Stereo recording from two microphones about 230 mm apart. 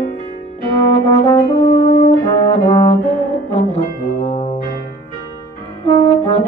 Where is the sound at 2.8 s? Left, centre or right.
Left.